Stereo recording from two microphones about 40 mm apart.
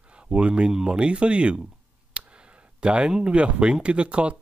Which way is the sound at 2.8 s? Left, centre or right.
Right.